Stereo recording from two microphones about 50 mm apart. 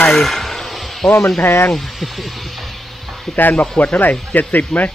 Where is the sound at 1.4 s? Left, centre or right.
Left.